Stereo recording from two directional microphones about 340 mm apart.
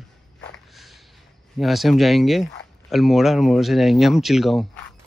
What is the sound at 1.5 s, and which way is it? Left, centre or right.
Speech, centre.